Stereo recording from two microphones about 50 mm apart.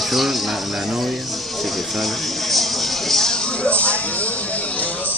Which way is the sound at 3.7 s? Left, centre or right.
Left.